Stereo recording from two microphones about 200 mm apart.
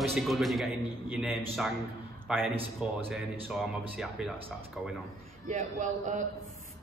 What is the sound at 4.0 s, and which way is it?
Speech, centre (ahead or behind).